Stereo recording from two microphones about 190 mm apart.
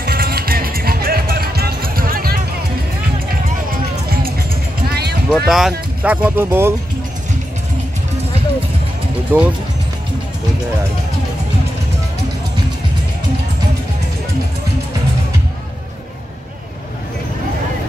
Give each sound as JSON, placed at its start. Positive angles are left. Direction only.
{"t": 0.0, "sound": "music", "side_deg": -50}
{"t": 4.2, "sound": "music", "side_deg": -55}
{"t": 5.3, "sound": "speech", "side_deg": 0}
{"t": 9.3, "sound": "speech", "side_deg": -10}